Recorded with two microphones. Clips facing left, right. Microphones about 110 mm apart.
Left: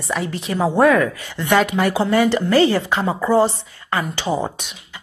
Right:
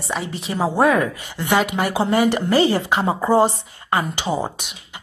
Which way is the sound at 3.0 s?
30° right (ahead or behind).